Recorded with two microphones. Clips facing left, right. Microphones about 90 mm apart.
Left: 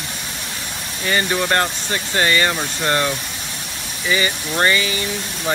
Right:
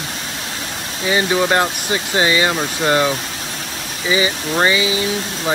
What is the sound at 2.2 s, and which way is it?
Speech, 15° right (ahead or behind).